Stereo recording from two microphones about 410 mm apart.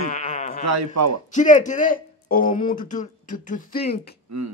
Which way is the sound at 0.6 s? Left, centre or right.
Right.